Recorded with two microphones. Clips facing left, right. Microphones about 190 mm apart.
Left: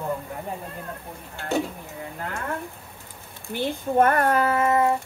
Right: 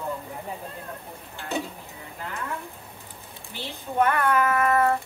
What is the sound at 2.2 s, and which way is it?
A child's voice, 55° left (ahead or behind).